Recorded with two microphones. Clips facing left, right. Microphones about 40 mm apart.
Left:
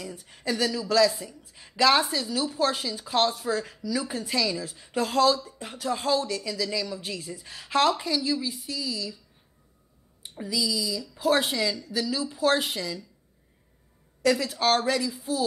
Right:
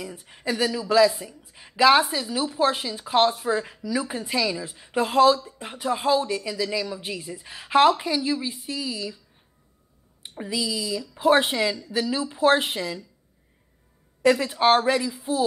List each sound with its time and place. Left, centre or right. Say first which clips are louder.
0.0 s speech: right 2 dB; centre
10.2 s speech: right 1 dB; right
14.2 s speech: right 4 dB; right